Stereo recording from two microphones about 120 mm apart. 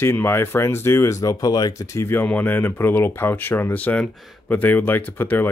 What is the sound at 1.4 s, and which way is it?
Speech, 35° left (ahead or behind).